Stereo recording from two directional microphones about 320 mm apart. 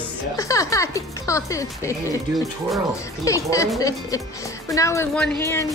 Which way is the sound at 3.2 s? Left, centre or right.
Centre.